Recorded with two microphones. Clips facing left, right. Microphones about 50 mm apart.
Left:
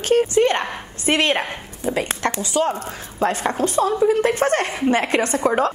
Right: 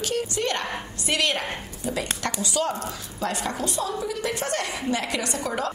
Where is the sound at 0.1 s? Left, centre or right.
Left.